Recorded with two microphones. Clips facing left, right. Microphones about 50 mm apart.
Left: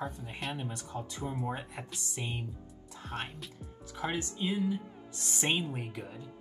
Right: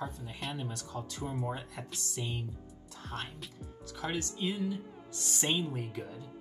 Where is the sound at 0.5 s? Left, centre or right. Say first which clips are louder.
Left 1 dB; left.